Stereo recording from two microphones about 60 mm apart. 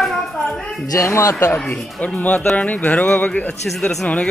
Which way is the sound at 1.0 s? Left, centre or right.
Left.